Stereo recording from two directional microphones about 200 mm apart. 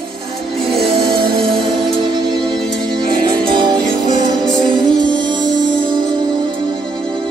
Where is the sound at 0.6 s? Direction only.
25° right (ahead or behind).